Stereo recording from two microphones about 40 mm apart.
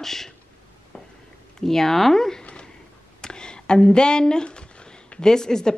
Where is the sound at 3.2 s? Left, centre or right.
Centre.